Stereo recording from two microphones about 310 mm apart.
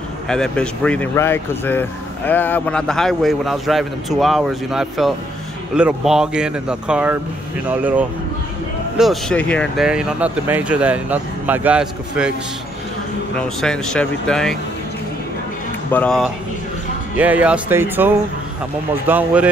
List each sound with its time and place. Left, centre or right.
0.3 s speech: centre
13.4 s speech: centre
15.9 s speech: centre